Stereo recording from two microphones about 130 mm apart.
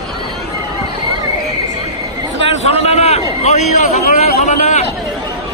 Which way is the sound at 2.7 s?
55° left (ahead or behind).